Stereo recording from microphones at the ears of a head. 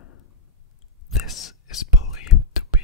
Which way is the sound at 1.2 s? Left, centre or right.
Left.